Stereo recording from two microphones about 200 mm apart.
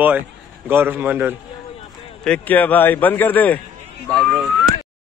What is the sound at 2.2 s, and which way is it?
A man's voice, 5° left (ahead or behind).